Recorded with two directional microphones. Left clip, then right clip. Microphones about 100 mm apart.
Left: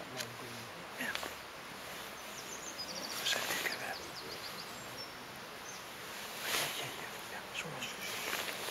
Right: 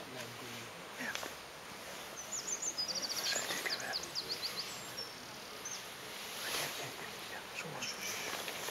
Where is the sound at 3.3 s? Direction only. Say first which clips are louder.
Left 5 dB; 15° left (ahead or behind).